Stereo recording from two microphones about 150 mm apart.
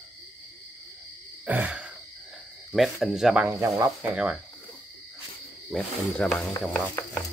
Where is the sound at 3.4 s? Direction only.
20° right (ahead or behind).